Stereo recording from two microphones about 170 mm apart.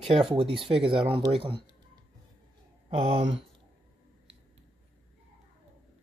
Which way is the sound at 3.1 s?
35° right (ahead or behind).